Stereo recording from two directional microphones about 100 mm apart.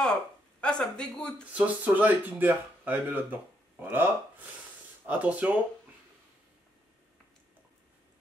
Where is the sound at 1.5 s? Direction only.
15° right (ahead or behind).